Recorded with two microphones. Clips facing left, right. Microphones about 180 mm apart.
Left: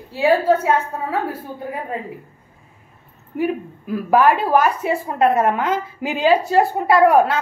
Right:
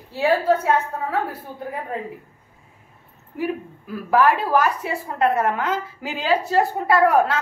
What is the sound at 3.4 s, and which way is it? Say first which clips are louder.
A woman's voice: left 4 dB; 20° left (ahead or behind).